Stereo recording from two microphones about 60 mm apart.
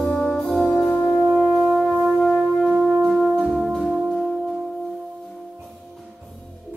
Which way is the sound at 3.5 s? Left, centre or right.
Centre.